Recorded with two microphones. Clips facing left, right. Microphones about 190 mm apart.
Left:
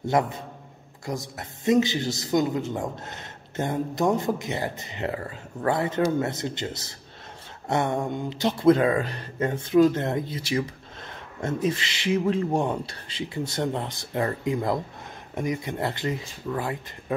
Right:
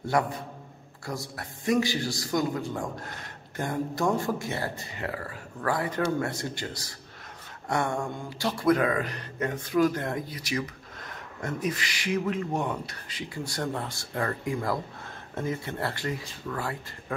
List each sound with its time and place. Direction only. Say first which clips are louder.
0.0 s a man's voice: left 3 dB; 20° left (ahead or behind)